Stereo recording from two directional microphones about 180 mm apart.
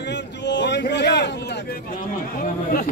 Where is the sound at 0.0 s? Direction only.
75° left (ahead or behind).